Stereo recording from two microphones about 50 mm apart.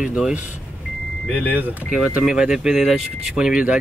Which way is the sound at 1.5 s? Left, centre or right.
Right.